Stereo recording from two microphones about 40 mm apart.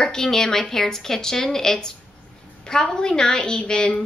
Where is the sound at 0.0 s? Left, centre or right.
Centre.